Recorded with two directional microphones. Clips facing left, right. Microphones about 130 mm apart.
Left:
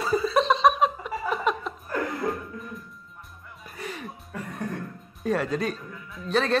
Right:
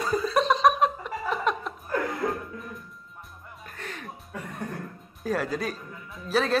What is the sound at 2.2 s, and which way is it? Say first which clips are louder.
Music: left 1 dB; centre (ahead or behind).